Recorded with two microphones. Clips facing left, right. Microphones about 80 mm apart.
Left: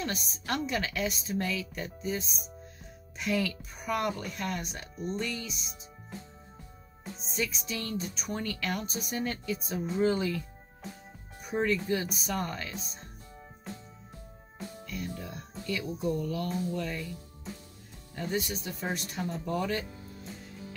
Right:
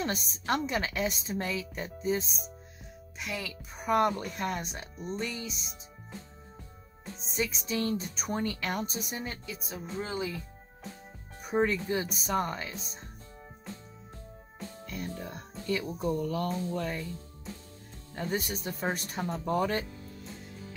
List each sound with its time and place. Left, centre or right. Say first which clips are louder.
0.0 s speech: right 2 dB; right
3.2 s speech: left 7 dB; centre
3.7 s speech: right 6 dB; right
7.3 s speech: right 3 dB; right
9.1 s speech: left 5 dB; centre
11.4 s speech: right 1 dB; right
14.9 s speech: right 1 dB; right